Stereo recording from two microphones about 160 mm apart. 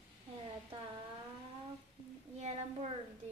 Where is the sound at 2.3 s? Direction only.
45° right (ahead or behind).